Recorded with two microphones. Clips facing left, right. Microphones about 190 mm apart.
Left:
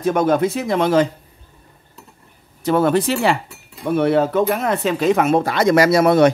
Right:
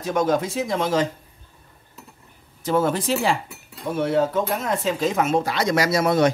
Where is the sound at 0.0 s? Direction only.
60° left (ahead or behind).